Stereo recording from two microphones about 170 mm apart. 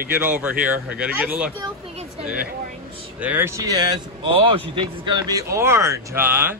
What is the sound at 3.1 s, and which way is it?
Speech, 10° right (ahead or behind).